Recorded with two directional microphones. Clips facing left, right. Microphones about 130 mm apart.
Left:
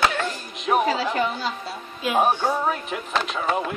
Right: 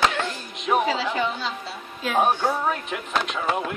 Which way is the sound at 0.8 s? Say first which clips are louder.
Left 1 dB; 45° left (ahead or behind).